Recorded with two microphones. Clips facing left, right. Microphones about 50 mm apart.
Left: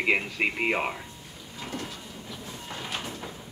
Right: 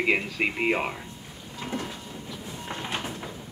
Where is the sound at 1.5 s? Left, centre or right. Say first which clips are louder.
Right 3 dB; centre.